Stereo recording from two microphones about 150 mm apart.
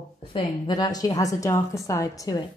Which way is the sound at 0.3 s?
30° left (ahead or behind).